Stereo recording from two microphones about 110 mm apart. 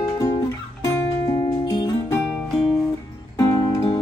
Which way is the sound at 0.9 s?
35° left (ahead or behind).